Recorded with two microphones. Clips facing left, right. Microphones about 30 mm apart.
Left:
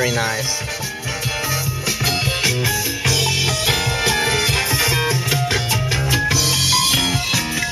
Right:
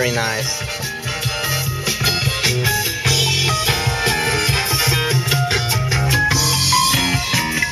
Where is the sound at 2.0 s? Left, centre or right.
Right.